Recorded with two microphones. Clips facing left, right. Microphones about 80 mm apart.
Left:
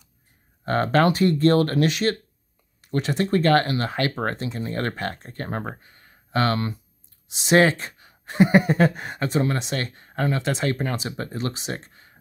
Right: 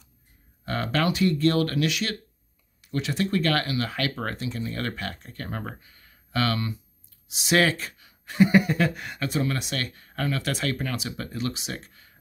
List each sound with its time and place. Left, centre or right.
0.7 s speech: left